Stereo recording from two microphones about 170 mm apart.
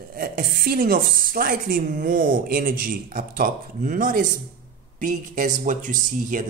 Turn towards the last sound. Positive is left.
turn(degrees=-50)  # may be behind; listen again after turning